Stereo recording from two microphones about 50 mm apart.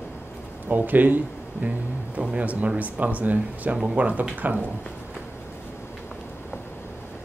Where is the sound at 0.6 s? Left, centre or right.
Right.